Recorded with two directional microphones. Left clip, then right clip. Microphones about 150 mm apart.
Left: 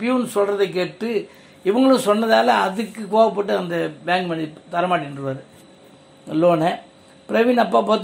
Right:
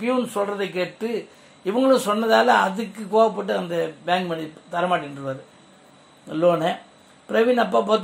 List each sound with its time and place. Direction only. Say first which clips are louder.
0.0 s a man's voice: left 3 dB; 15° left (ahead or behind)